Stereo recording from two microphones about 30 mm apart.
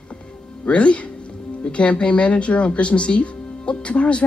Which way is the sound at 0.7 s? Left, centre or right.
Left.